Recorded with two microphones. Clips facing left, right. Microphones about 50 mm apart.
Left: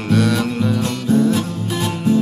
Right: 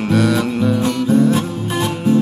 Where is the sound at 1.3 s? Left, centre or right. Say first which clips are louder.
Right 2 dB; right.